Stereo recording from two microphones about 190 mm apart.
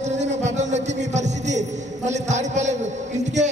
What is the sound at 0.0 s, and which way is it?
Music, 35° right (ahead or behind).